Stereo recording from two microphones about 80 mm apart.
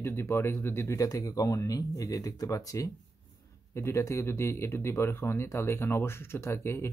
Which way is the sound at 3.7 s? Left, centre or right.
Left.